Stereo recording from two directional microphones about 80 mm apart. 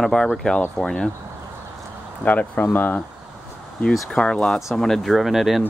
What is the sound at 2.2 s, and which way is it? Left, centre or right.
Speech, centre.